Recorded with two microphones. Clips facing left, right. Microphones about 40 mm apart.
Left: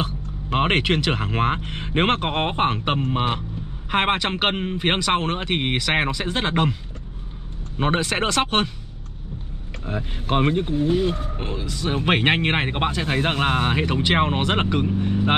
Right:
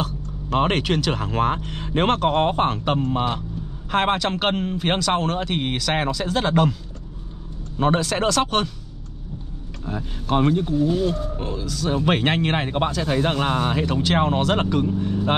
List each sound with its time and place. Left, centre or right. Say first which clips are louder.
0.0 s speech: even; left
7.7 s speech: right 1 dB; left
9.8 s speech: even; left